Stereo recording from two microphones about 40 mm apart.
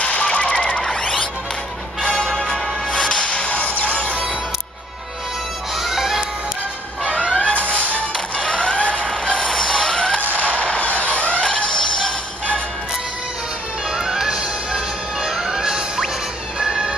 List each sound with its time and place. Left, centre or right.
0.0 s music: left; by 2.7 s centre
2.9 s whip: left
3.3 s music: left
5.8 s music: centre
7.3 s music: left
9.1 s a sound: left
11.4 s music: left
13.8 s music: centre